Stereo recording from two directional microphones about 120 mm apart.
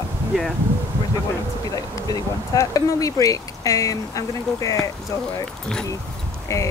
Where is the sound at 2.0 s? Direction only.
30° left (ahead or behind).